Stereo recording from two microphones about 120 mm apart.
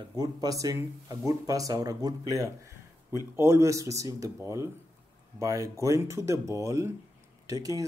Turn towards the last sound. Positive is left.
turn(degrees=-30)  # may be behind; listen again after turning